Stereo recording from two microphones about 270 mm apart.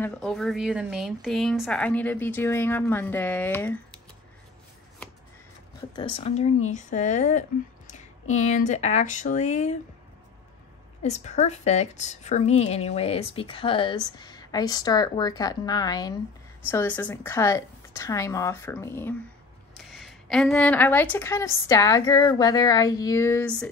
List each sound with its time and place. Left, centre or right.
0.0 s speech: centre
5.9 s a woman's voice: left
11.0 s a woman's voice: left; by 23.7 s centre